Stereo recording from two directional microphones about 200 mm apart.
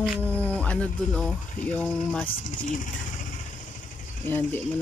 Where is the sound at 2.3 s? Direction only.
40° left (ahead or behind).